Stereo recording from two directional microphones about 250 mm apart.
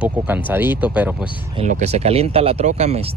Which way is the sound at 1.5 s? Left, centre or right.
Right.